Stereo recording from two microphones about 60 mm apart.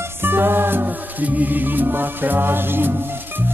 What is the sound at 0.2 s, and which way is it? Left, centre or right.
Music, right.